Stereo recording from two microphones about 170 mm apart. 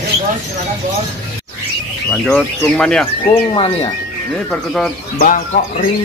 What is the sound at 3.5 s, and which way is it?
Speech, 35° left (ahead or behind).